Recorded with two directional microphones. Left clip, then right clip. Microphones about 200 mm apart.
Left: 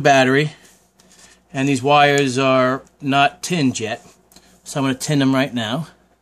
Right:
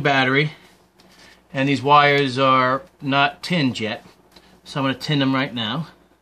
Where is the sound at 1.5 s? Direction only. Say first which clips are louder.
Even; 25° left (ahead or behind); by 6.0 s 45° left (ahead or behind).